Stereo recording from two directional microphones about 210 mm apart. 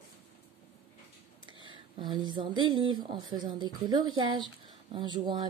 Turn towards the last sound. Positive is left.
turn(degrees=-20)  # may be behind; listen again after turning